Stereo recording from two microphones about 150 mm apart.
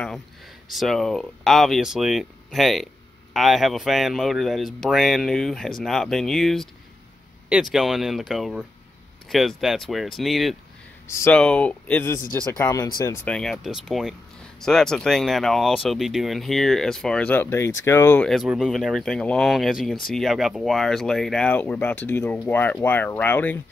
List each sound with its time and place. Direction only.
0.7 s speech: centre (ahead or behind)
11.1 s speech: 20° left (ahead or behind)
11.3 s speech: 5° left (ahead or behind)
13.3 s speech: 5° left (ahead or behind)
18.3 s speech: 5° right (ahead or behind); by 23.6 s 10° left (ahead or behind)